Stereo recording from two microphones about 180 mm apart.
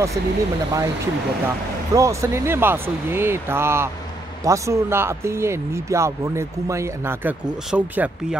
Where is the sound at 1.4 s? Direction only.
15° right (ahead or behind).